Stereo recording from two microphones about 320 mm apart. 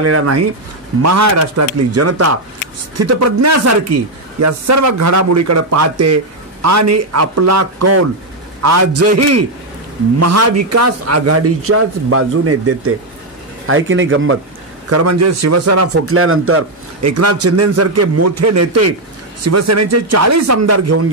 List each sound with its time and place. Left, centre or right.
0.0 s speech: right
14.9 s speech: right